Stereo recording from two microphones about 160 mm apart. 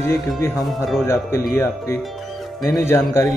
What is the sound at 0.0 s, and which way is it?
Speech, 15° left (ahead or behind).